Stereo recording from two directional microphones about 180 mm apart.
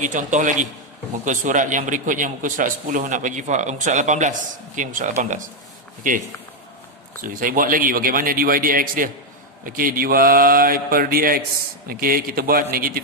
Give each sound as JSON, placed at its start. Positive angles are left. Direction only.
{"t": 0.0, "sound": "a man's voice", "side_deg": -45}
{"t": 7.2, "sound": "a man's voice", "side_deg": -50}